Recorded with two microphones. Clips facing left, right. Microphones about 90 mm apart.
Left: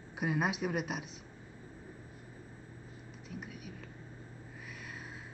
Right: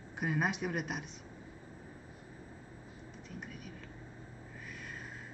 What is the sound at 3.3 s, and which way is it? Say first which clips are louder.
Speech: left 2 dB; 5° left (ahead or behind).